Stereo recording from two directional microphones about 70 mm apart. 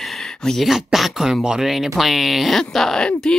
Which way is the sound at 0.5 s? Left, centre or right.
Centre.